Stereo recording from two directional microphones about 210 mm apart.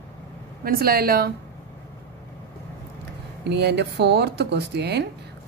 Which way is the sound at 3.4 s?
50° right (ahead or behind).